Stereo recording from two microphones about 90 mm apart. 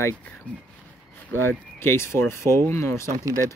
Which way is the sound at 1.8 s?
30° left (ahead or behind).